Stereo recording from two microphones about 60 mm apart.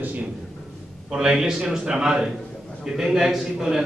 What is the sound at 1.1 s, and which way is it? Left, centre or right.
A man's voice, centre.